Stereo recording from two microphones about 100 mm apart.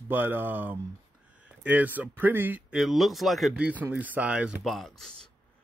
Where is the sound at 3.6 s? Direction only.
15° right (ahead or behind).